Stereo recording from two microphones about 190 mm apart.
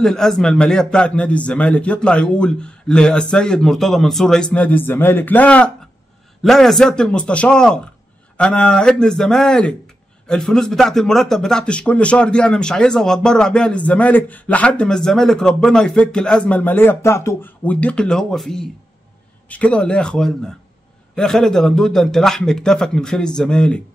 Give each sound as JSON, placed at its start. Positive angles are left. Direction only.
{"t": 0.0, "sound": "a man's voice", "side_deg": 5}